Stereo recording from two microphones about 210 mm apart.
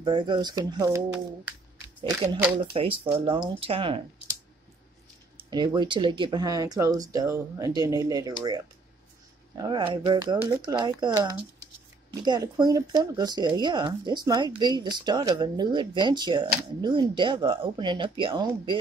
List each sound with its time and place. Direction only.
0.0 s speech: 20° right (ahead or behind)
2.7 s speech: 25° right (ahead or behind)
5.5 s speech: 20° right (ahead or behind)